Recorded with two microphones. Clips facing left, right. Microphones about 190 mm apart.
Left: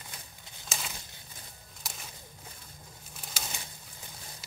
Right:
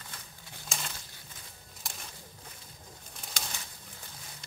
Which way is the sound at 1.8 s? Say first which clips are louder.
Even; centre (ahead or behind).